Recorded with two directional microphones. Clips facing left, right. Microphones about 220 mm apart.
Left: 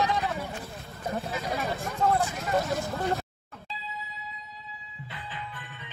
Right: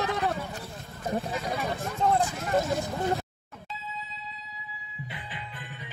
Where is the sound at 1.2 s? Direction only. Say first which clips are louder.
Even; centre (ahead or behind).